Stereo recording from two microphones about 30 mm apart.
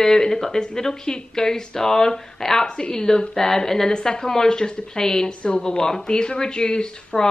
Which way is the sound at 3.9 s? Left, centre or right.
Left.